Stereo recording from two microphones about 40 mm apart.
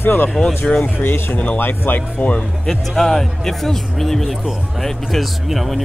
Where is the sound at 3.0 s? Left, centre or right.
Centre.